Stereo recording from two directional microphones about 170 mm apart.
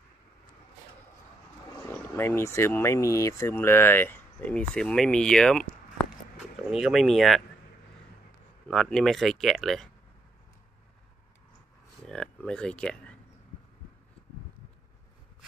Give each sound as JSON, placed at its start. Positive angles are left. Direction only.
{"t": 1.9, "sound": "speech", "side_deg": 15}
{"t": 8.6, "sound": "speech", "side_deg": 5}
{"t": 12.1, "sound": "speech", "side_deg": 5}